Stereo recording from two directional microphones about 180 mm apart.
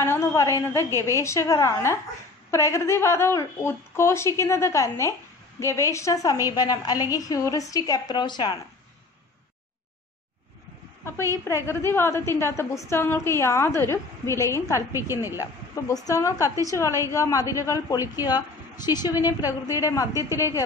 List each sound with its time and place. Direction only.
0.0 s a woman's voice: 15° left (ahead or behind)
11.4 s a woman's voice: 15° left (ahead or behind)
14.9 s a woman's voice: 15° right (ahead or behind)
15.7 s a woman's voice: 20° left (ahead or behind)